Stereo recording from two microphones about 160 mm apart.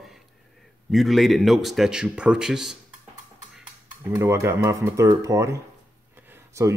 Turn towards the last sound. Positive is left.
turn(degrees=-15)  # may be behind; listen again after turning